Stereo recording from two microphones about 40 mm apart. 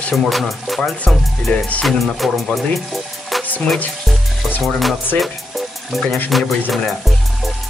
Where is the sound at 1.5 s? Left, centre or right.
Left.